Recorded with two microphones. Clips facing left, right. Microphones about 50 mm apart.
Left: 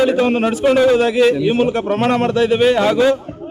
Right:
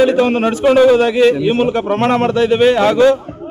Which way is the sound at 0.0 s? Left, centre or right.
Centre.